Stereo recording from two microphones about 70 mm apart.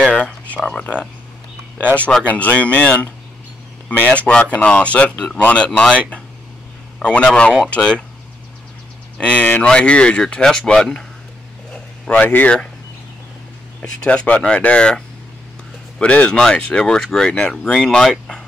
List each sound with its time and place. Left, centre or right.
0.1 s speech: centre
0.6 s speech: centre
2.2 s speech: left
9.2 s speech: left
11.7 s a sound: centre
14.0 s speech: centre
17.7 s speech: centre